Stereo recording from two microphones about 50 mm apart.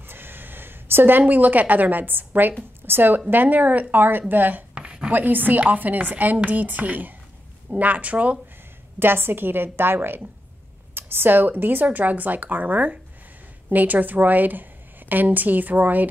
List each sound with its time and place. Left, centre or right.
0.0 s a sound: right
1.2 s a woman's voice: right
4.7 s a sound: right
5.1 s a woman's voice: right
9.0 s a woman's voice: right
11.0 s a woman's voice: right